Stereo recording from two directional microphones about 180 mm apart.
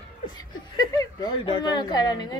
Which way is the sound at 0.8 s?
20° left (ahead or behind).